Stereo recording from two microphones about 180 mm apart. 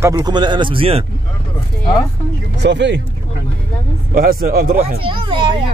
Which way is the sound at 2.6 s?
75° right (ahead or behind).